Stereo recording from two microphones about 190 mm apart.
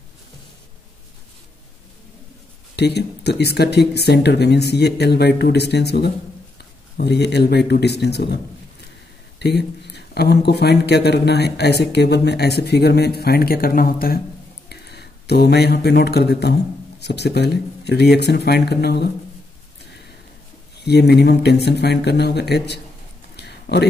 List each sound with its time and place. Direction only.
2.7 s a man's voice: 60° left (ahead or behind)
9.4 s a man's voice: 60° left (ahead or behind)
20.8 s a man's voice: 60° left (ahead or behind)
23.3 s a sound: 60° left (ahead or behind)